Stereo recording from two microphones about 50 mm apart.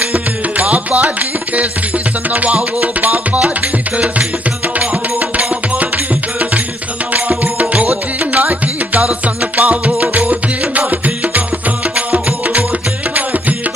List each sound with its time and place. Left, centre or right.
0.0 s music: right
7.2 s music: right